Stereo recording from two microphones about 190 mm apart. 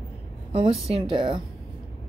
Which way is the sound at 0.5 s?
30° right (ahead or behind).